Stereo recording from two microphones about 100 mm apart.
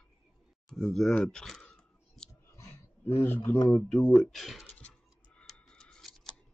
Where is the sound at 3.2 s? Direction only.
20° left (ahead or behind).